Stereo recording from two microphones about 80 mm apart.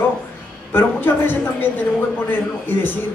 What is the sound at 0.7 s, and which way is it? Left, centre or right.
A man's voice, left.